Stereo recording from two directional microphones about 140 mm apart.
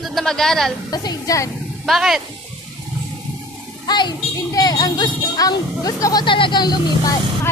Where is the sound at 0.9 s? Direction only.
30° left (ahead or behind).